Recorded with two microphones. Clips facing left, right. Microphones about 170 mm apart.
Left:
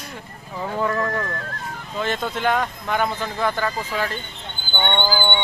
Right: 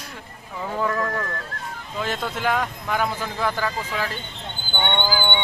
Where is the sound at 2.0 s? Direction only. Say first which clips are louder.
Left 2 dB; 5° right (ahead or behind).